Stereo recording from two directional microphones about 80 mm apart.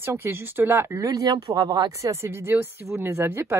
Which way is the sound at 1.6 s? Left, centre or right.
Right.